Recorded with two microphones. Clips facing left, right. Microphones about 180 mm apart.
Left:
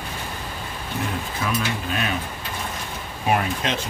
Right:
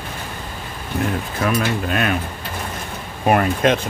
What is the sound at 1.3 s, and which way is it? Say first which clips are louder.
Speech: right 6 dB; 60° right (ahead or behind).